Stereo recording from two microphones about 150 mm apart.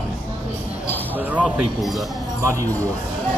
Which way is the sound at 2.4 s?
20° right (ahead or behind).